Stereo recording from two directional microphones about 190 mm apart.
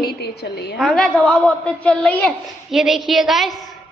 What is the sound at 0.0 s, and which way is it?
Speech, 60° left (ahead or behind).